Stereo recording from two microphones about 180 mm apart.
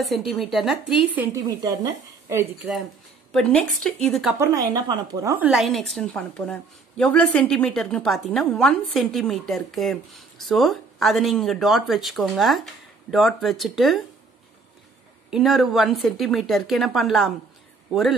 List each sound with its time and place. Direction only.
0.0 s a woman's voice: centre (ahead or behind); by 2.4 s 20° right (ahead or behind)
3.3 s a woman's voice: 5° left (ahead or behind)
4.4 s speech: 20° right (ahead or behind)
5.5 s a woman's voice: centre (ahead or behind)
15.3 s a woman's voice: centre (ahead or behind)